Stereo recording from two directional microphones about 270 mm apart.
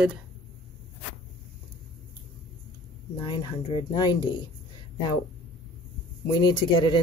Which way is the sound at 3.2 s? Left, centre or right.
Centre.